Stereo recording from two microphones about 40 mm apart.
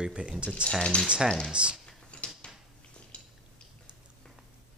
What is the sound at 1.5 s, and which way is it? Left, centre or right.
Speech, right.